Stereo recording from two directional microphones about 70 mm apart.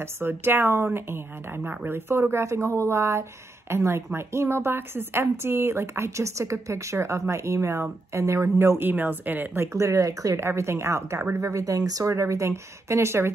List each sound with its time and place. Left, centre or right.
0.0 s speech: right
10.4 s speech: right